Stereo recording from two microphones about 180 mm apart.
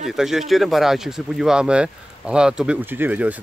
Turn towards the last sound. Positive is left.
turn(degrees=-10)  # may be behind; listen again after turning